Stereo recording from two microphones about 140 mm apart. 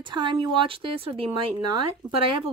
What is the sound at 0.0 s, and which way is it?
Speech, 35° right (ahead or behind).